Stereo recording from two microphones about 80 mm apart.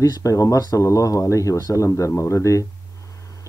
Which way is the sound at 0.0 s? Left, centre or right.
Left.